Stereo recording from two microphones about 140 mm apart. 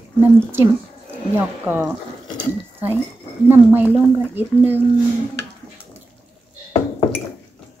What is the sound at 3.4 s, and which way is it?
A child's voice, 15° right (ahead or behind).